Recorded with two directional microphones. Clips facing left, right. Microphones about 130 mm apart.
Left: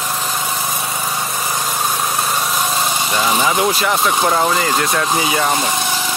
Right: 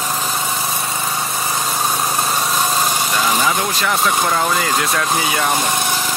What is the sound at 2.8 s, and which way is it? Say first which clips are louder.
Vehicle: even; 5° left (ahead or behind).